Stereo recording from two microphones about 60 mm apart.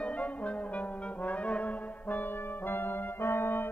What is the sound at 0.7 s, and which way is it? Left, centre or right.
Brass instrument, left.